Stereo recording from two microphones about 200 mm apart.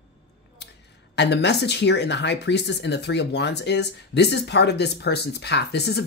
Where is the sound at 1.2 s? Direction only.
60° left (ahead or behind).